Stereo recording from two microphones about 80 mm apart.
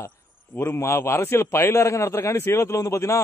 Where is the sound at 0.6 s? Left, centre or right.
Left.